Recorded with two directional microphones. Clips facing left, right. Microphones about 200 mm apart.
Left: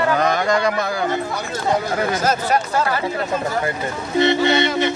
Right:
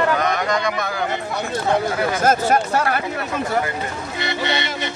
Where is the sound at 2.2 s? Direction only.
50° right (ahead or behind).